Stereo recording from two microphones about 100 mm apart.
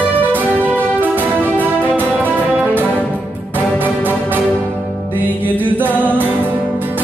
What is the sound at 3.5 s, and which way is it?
Music, 20° right (ahead or behind).